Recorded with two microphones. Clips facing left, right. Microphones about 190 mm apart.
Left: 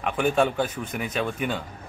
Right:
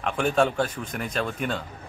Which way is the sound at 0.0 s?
5° left (ahead or behind).